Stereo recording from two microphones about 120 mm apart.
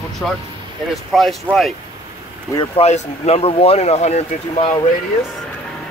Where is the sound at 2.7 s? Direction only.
60° left (ahead or behind).